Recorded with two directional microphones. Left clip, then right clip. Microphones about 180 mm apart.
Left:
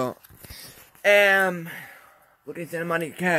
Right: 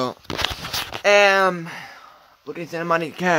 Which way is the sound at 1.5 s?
5° right (ahead or behind).